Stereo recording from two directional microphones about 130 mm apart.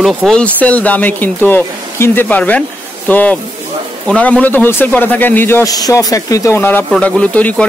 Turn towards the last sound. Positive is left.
turn(degrees=10)  # may be behind; listen again after turning